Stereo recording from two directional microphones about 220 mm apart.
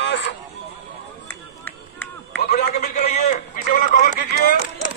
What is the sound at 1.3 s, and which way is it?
Run, 10° left (ahead or behind).